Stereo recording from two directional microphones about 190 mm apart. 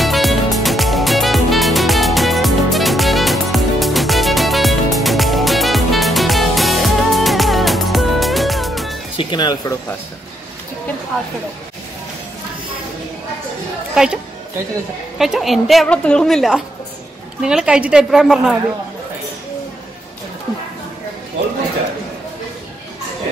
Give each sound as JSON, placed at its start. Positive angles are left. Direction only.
{"t": 0.0, "sound": "music", "side_deg": 0}
{"t": 9.1, "sound": "speech", "side_deg": 25}
{"t": 13.9, "sound": "a woman's voice", "side_deg": -5}